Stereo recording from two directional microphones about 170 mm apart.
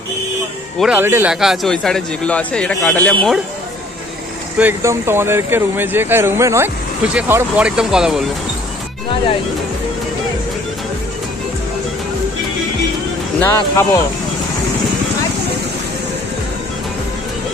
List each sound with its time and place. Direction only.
0.7 s a man's voice: 10° right (ahead or behind); by 3.3 s 10° left (ahead or behind)
4.6 s speech: 10° right (ahead or behind)
13.4 s speech: 15° left (ahead or behind)